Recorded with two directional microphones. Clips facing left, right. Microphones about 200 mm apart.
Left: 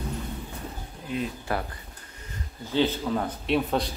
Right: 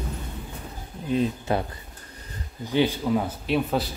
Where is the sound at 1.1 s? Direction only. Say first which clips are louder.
Right 5 dB; 20° right (ahead or behind).